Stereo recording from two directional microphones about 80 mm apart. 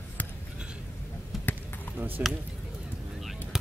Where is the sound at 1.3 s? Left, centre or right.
Centre.